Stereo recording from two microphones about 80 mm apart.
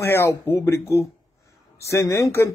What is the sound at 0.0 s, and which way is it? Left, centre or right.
Speech, left.